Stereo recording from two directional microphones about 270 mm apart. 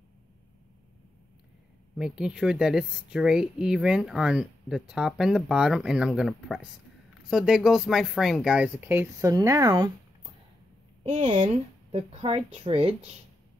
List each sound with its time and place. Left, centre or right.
2.0 s speech: centre
11.1 s speech: right